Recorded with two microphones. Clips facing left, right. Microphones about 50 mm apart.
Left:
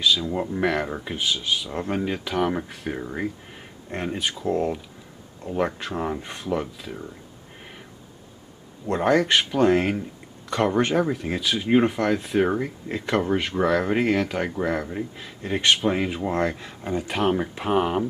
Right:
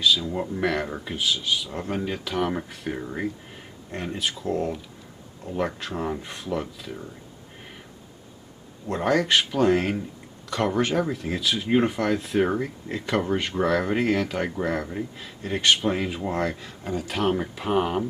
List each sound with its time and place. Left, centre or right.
0.0 s speech: centre
9.0 s speech: centre